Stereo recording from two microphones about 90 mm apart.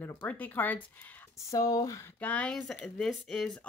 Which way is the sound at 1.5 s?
40° left (ahead or behind).